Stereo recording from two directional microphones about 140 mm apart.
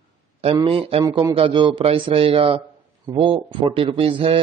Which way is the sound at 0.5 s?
40° right (ahead or behind).